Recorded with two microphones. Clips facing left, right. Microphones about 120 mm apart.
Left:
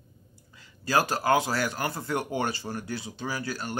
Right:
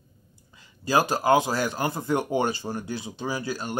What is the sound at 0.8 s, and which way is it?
Speech, 15° right (ahead or behind).